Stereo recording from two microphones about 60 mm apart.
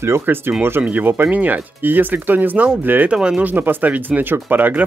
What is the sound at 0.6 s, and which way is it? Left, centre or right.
Speech, right.